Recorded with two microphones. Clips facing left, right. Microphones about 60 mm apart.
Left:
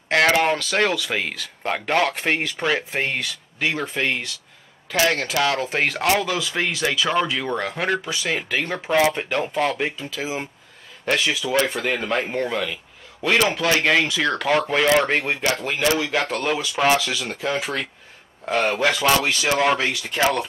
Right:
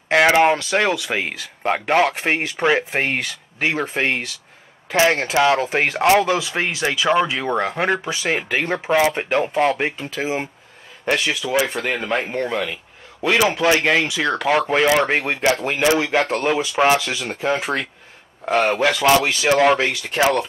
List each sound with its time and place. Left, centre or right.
0.1 s speech: centre
11.1 s speech: centre
13.5 s speech: right
13.7 s speech: centre
15.4 s speech: right
18.9 s speech: centre
19.1 s speech: right
20.2 s speech: centre